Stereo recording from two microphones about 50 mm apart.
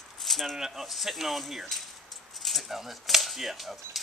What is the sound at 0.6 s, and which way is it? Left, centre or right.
Speech, centre.